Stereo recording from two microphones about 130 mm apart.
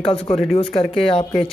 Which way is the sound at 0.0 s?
45° left (ahead or behind).